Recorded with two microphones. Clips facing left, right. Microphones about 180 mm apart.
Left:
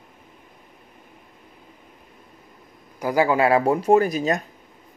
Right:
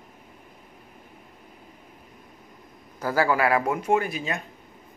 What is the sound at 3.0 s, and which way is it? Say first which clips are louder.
Speech: left 3 dB; 15° left (ahead or behind).